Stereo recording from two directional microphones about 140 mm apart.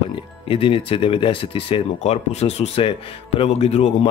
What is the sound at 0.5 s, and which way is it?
Speech, 40° left (ahead or behind).